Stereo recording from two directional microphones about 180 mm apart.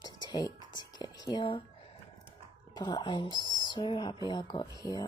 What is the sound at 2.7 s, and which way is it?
Speech, 25° left (ahead or behind).